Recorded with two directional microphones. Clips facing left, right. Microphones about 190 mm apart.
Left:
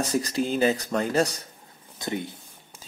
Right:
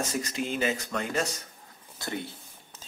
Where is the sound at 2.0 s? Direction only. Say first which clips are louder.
Left 4 dB; 15° left (ahead or behind).